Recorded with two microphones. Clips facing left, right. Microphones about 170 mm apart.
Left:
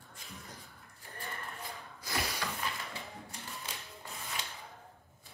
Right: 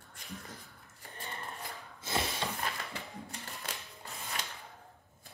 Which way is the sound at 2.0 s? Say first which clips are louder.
Right 2 dB; 25° right (ahead or behind).